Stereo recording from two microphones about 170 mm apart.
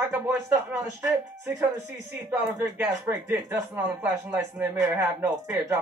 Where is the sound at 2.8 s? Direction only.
20° right (ahead or behind).